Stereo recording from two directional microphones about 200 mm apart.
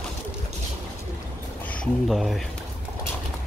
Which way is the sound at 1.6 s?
5° left (ahead or behind).